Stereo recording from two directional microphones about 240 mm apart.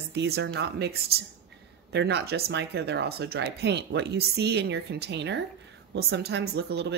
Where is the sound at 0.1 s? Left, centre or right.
Right.